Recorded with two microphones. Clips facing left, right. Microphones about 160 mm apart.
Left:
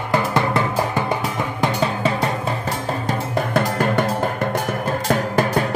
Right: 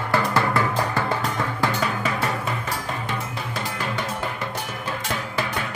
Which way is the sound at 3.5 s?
50° left (ahead or behind).